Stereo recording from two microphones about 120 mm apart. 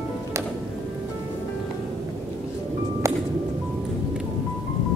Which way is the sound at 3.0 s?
25° right (ahead or behind).